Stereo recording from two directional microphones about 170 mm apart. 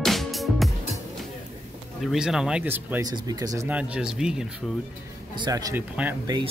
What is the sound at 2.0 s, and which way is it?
Speech, 5° right (ahead or behind).